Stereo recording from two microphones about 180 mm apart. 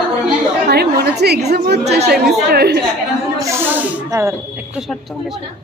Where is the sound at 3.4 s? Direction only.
10° right (ahead or behind).